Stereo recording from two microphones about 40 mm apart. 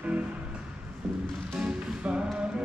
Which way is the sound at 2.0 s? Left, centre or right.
Right.